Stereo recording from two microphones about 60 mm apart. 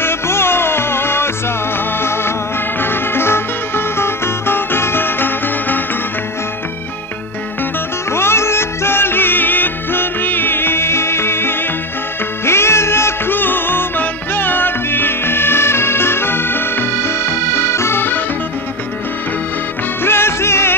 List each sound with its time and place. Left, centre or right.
0.0 s music: left
8.1 s music: left
20.0 s music: left